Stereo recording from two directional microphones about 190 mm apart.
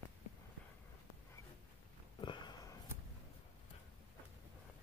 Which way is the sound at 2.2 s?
25° left (ahead or behind).